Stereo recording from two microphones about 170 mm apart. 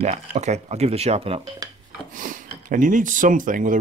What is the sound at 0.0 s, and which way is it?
Speech, 40° right (ahead or behind).